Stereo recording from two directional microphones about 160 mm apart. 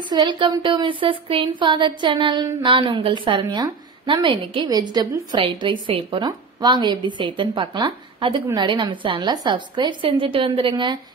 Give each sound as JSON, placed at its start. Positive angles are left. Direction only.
{"t": 0.1, "sound": "speech", "side_deg": -30}